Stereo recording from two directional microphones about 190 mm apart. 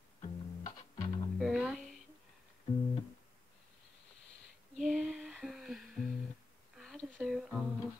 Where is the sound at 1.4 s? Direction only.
Centre (ahead or behind).